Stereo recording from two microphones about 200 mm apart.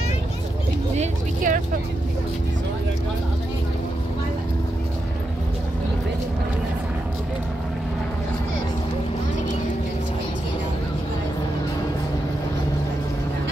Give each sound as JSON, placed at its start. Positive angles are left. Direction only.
{"t": 0.9, "sound": "speech", "side_deg": -40}